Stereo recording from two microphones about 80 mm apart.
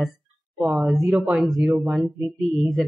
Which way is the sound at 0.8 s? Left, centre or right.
Centre.